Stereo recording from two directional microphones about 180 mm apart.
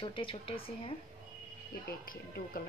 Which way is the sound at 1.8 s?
55° left (ahead or behind).